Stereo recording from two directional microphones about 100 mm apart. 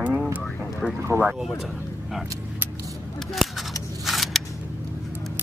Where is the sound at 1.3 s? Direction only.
Centre (ahead or behind).